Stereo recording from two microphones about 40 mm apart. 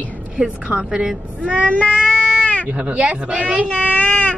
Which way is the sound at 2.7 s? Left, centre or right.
Right.